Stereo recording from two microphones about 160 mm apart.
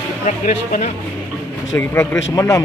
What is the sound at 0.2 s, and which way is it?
Speech, 50° left (ahead or behind).